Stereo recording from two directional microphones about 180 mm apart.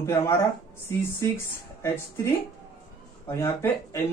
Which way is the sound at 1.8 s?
15° left (ahead or behind).